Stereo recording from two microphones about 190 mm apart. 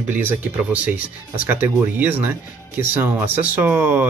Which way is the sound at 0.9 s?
50° left (ahead or behind).